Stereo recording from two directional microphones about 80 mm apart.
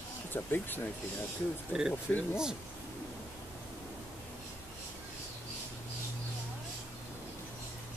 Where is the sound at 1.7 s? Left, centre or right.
Centre.